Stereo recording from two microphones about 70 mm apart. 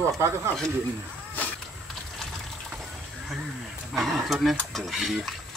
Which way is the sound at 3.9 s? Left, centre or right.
Centre.